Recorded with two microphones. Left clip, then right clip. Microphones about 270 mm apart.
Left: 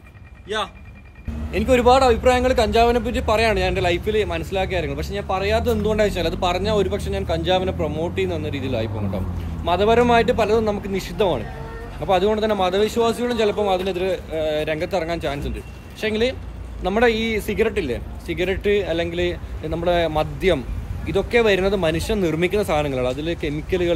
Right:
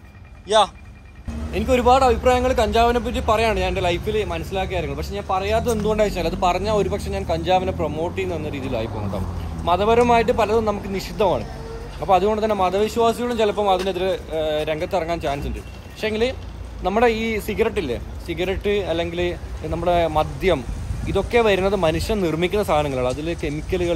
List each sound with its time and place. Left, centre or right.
0.5 s a man's voice: centre
1.5 s a man's voice: centre